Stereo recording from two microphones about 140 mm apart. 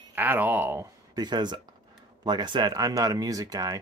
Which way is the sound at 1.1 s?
30° right (ahead or behind).